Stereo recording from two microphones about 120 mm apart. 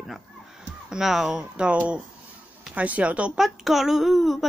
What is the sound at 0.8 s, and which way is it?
Speech, 5° right (ahead or behind).